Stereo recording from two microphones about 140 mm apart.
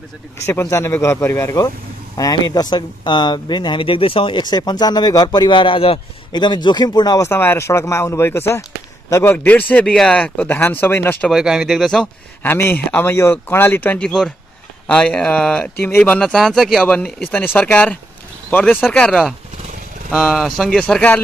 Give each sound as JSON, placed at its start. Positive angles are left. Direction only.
{"t": 0.5, "sound": "speech", "side_deg": 20}
{"t": 11.2, "sound": "speech", "side_deg": -5}
{"t": 12.4, "sound": "speech", "side_deg": 15}